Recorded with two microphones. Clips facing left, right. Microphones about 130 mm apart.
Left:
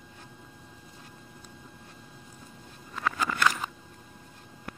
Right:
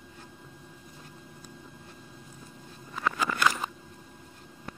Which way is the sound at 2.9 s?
5° right (ahead or behind).